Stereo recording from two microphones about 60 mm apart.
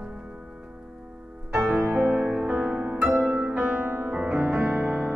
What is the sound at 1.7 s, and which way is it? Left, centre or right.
Music, right.